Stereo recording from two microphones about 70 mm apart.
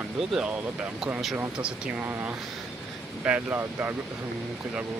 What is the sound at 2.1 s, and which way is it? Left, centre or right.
Speech, right.